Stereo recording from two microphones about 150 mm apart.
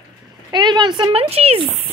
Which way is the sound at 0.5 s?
30° right (ahead or behind).